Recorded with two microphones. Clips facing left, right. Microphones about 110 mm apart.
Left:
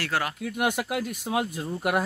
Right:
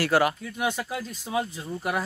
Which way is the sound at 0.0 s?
5° right (ahead or behind).